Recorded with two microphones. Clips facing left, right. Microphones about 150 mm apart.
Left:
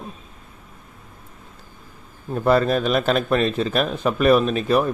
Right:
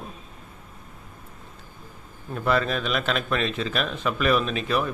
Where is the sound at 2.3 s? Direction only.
40° left (ahead or behind).